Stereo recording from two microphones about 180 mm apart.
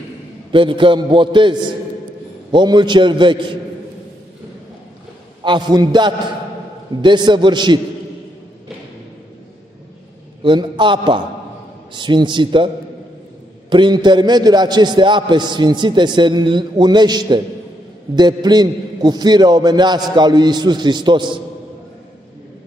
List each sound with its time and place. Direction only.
0.5 s a man's voice: 30° right (ahead or behind)
5.4 s a man's voice: 25° right (ahead or behind)
10.4 s a man's voice: 25° right (ahead or behind)
13.7 s a man's voice: 25° right (ahead or behind)